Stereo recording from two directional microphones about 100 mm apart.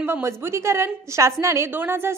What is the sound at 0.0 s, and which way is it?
A woman's voice, 25° right (ahead or behind).